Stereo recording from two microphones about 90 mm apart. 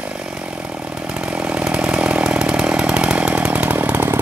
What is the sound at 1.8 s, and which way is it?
Chainsaw, 10° right (ahead or behind).